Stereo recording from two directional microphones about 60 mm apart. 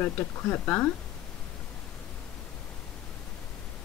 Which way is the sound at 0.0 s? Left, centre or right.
Left.